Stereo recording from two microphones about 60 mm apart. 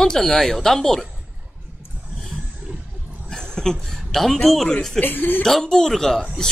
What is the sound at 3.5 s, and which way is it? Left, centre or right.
Speech, centre.